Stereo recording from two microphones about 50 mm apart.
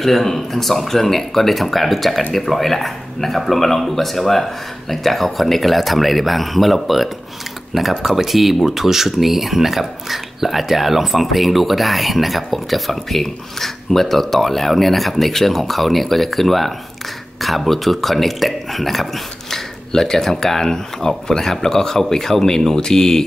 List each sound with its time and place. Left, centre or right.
0.0 s speech: centre